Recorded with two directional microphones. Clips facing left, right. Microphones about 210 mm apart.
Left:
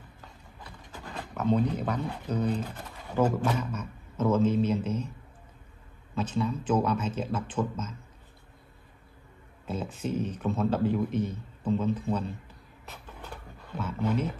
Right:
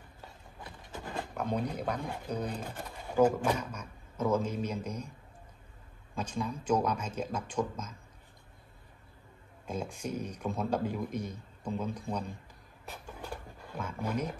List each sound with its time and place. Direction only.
0.7 s vehicle: 20° right (ahead or behind)
1.3 s a man's voice: 10° right (ahead or behind)
6.1 s a man's voice: 10° right (ahead or behind)
9.7 s a man's voice: 10° right (ahead or behind)
12.9 s dog: 10° right (ahead or behind)